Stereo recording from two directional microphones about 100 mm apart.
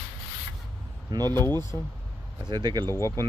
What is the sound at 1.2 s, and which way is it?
Speech, 25° left (ahead or behind).